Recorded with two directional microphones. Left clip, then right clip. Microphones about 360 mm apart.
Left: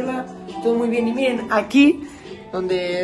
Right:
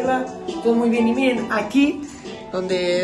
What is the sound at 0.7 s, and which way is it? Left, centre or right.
Speech, centre.